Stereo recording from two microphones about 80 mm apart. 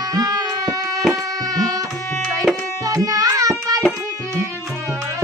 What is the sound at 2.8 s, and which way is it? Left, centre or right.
Music, right.